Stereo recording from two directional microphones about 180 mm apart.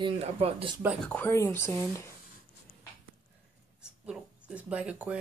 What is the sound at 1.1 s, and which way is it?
Speech, 10° left (ahead or behind).